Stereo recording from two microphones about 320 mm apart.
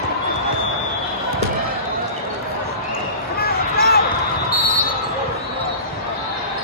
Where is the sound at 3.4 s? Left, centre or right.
Left.